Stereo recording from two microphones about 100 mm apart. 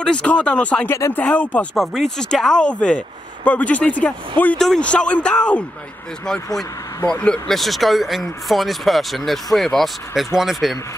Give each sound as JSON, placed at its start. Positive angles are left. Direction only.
{"t": 0.0, "sound": "speech", "side_deg": 10}